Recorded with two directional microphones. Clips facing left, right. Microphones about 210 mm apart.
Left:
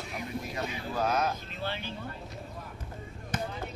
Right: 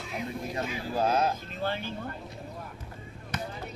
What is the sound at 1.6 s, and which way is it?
Speech, 45° right (ahead or behind).